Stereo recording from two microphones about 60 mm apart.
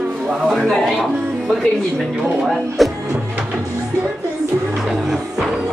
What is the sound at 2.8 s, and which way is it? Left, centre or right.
Music, centre.